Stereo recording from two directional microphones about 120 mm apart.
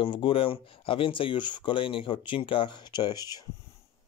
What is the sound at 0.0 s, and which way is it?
Speech, 45° left (ahead or behind).